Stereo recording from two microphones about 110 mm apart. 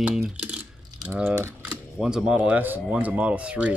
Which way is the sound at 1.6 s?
5° right (ahead or behind).